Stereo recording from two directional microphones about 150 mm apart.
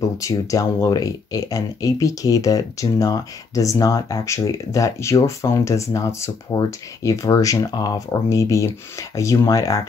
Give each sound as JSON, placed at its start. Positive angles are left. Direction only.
{"t": 0.2, "sound": "speech", "side_deg": 20}